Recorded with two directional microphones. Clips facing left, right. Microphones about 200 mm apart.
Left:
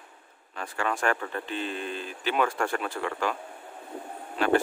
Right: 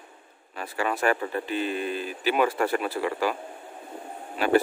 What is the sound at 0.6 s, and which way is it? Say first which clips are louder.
Speech: right 2 dB; 10° right (ahead or behind).